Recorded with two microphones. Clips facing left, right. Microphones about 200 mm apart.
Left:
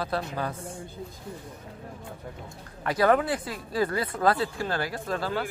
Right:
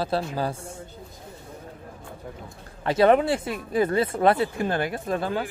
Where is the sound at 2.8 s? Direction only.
25° right (ahead or behind).